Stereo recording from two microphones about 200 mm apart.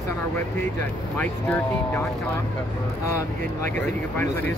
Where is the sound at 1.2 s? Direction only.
10° left (ahead or behind).